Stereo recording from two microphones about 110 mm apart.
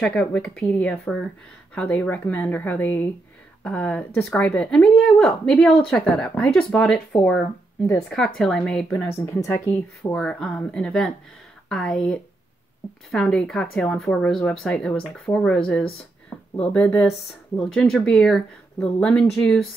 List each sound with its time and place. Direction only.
0.0 s speech: 10° left (ahead or behind)
9.0 s speech: 25° left (ahead or behind)
10.1 s speech: 10° left (ahead or behind)